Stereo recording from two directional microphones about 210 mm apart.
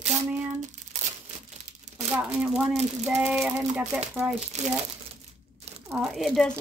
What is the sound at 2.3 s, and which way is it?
Speech, centre (ahead or behind).